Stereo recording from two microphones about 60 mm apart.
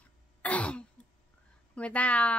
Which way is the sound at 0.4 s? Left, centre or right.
Left.